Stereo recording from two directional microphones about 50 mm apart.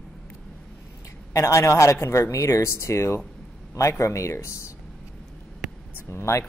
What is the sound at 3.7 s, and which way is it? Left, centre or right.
Speech, left.